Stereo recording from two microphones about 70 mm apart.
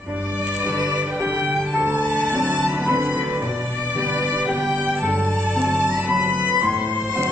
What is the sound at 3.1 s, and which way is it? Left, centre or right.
Music, right.